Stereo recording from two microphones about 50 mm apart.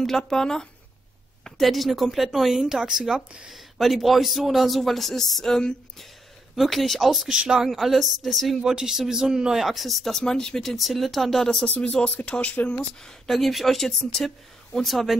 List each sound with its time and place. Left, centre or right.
0.0 s a man's voice: centre
6.5 s a man's voice: centre
7.2 s a man's voice: centre
8.6 s speech: centre
9.7 s a man's voice: centre
10.2 s speech: centre
10.6 s a man's voice: centre
11.6 s speech: left
13.3 s a man's voice: centre